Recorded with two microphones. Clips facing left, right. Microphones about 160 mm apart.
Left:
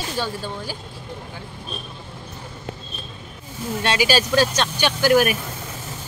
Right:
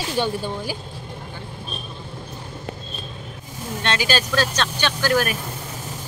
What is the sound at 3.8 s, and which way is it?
Speech, 10° left (ahead or behind).